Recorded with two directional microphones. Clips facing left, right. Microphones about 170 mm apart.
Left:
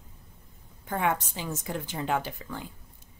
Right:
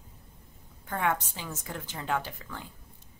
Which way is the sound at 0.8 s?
15° left (ahead or behind).